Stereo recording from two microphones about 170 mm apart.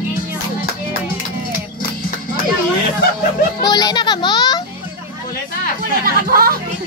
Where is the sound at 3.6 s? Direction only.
25° left (ahead or behind).